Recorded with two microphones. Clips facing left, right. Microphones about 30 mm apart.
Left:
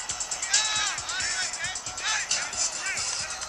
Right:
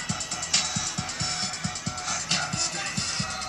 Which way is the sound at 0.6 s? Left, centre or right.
Left.